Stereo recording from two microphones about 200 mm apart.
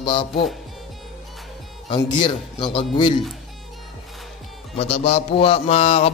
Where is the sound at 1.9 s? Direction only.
25° left (ahead or behind).